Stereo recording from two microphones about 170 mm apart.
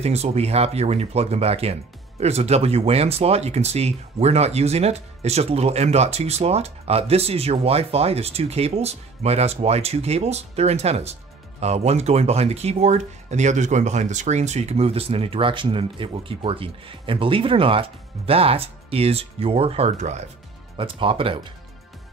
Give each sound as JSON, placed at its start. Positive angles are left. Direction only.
{"t": 0.0, "sound": "speech", "side_deg": -40}
{"t": 20.7, "sound": "speech", "side_deg": -30}